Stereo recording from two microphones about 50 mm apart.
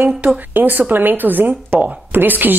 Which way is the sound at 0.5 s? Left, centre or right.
Right.